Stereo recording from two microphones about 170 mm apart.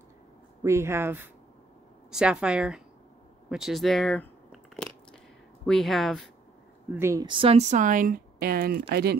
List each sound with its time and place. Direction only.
0.7 s a woman's voice: 15° right (ahead or behind)
3.4 s a sound: centre (ahead or behind)
5.7 s a woman's voice: centre (ahead or behind)
6.9 s speech: 15° right (ahead or behind)
7.2 s speech: 30° right (ahead or behind); by 9.1 s 70° right (ahead or behind)